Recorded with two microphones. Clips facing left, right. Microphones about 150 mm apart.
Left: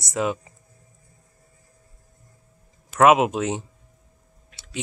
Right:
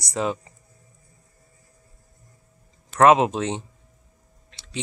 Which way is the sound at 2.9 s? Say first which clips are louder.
Even; 5° left (ahead or behind).